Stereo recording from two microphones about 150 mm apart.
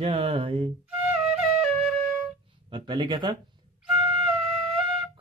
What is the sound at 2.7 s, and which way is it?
Mantra, 30° right (ahead or behind).